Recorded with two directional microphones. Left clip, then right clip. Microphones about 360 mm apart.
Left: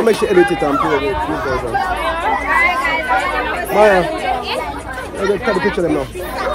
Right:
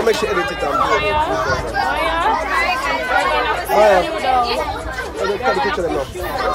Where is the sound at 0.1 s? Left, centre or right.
Centre.